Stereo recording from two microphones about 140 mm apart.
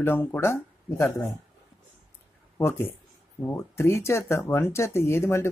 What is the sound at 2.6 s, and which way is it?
Speech, 15° left (ahead or behind).